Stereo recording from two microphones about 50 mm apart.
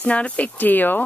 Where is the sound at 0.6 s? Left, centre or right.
Left.